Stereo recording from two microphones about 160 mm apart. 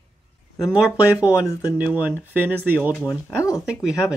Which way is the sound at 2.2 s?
10° right (ahead or behind).